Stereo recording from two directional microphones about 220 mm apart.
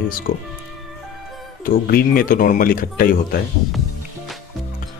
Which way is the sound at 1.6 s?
40° left (ahead or behind).